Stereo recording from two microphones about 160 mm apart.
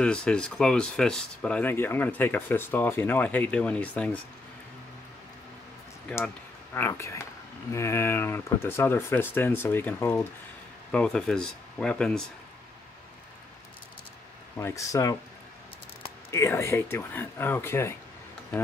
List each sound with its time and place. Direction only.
0.0 s speech: 5° left (ahead or behind)
6.0 s speech: 10° left (ahead or behind)
14.6 s speech: 20° left (ahead or behind)
16.3 s speech: 15° left (ahead or behind)